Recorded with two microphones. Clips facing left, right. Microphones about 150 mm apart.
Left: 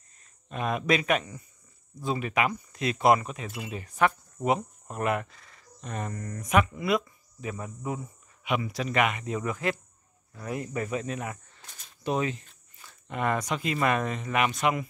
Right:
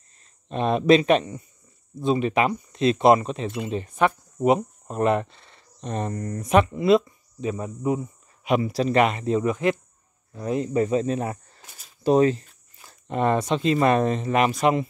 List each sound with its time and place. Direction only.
0.5 s speech: 30° right (ahead or behind)
8.5 s speech: 35° right (ahead or behind)